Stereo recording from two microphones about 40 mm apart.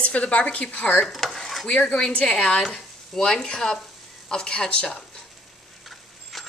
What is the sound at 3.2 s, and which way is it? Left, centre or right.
Speech, centre.